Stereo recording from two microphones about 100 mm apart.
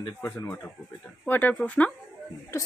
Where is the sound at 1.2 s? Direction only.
15° left (ahead or behind).